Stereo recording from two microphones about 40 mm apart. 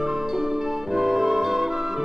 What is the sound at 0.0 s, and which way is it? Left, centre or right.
Music, centre.